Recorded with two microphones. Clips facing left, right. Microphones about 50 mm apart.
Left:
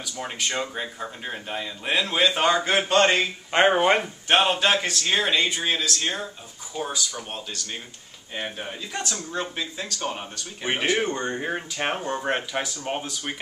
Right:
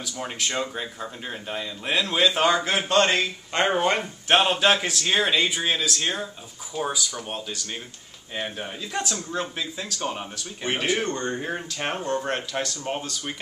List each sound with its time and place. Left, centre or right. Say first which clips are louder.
0.0 s speech: even; centre
4.0 s speech: even; centre